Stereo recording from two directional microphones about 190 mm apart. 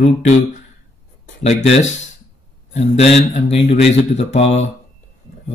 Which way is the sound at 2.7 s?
30° left (ahead or behind).